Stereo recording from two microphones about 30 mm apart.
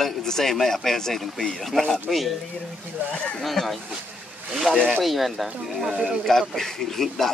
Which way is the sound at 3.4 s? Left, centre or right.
Centre.